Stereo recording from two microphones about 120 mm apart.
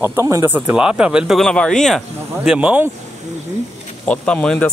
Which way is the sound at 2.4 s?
5° right (ahead or behind).